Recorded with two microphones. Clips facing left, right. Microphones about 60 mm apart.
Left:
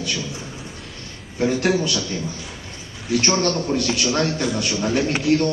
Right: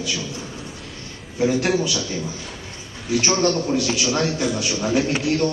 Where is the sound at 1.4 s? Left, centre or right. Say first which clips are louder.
Even; centre.